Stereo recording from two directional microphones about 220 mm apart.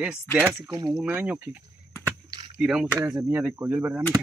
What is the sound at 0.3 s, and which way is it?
Speech, 10° left (ahead or behind).